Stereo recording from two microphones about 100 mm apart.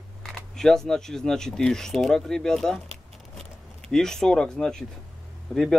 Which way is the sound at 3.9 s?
5° left (ahead or behind).